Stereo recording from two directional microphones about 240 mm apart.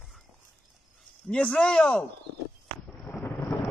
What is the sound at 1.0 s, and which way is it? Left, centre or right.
Speech, centre.